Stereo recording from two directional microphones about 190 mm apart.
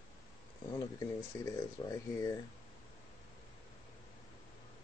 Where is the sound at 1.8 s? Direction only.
30° left (ahead or behind).